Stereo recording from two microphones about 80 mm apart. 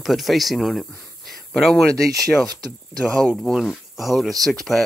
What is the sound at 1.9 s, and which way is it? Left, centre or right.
Speech, right.